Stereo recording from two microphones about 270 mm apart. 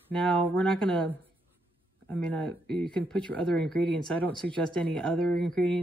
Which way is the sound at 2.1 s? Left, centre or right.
Centre.